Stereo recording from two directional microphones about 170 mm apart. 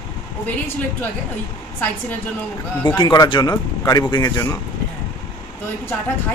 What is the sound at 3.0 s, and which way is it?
A man's voice, 25° left (ahead or behind).